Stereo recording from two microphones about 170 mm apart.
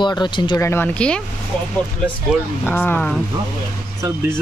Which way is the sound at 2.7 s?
10° left (ahead or behind).